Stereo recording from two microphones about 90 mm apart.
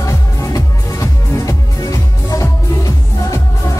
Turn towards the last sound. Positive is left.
turn(degrees=40)  # may be behind; listen again after turning